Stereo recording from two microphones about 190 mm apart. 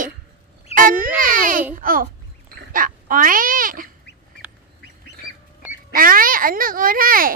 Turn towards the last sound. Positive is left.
turn(degrees=-50)  # may be behind; listen again after turning